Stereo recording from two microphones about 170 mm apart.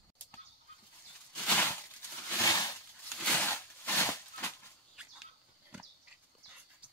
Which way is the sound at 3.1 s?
10° left (ahead or behind).